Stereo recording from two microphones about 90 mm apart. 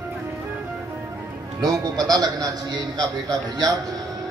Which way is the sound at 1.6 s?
50° right (ahead or behind).